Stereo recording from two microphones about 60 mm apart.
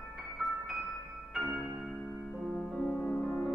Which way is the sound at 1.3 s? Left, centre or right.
Centre.